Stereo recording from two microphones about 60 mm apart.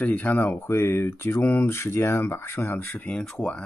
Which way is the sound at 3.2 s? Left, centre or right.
Centre.